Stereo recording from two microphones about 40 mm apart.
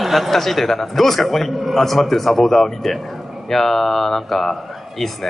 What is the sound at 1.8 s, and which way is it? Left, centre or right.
A man's voice, centre.